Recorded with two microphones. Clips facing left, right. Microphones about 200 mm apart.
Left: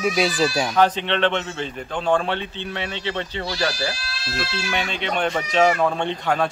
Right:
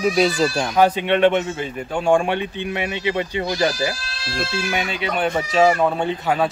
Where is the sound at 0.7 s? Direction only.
10° right (ahead or behind).